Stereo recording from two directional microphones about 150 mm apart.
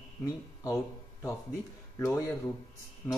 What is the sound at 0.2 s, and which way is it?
Speech, 20° left (ahead or behind).